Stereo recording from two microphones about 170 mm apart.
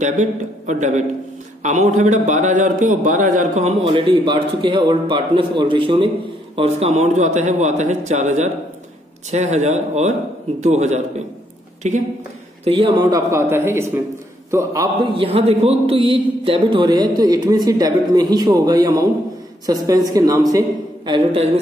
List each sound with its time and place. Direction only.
0.0 s a man's voice: 45° right (ahead or behind)
12.6 s a man's voice: 30° right (ahead or behind)